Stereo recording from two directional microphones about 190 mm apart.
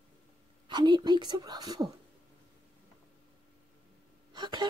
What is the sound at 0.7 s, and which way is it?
A woman's voice, 25° right (ahead or behind).